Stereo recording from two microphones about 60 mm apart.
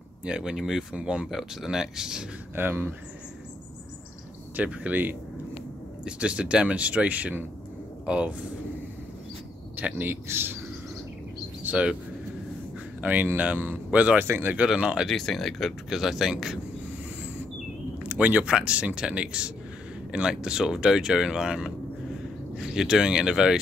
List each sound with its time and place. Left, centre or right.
0.2 s speech: centre
1.3 s speech: centre
2.5 s speech: right
4.6 s speech: right
6.0 s speech: centre
9.8 s speech: right
10.2 s speech: right
11.6 s speech: right
13.0 s speech: right
14.7 s speech: centre
15.0 s speech: centre
17.9 s speech: right